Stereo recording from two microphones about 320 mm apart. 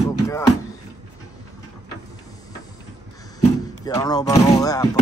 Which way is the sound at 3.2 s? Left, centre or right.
Centre.